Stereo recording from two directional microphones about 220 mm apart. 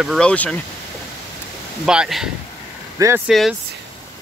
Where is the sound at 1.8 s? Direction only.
5° right (ahead or behind).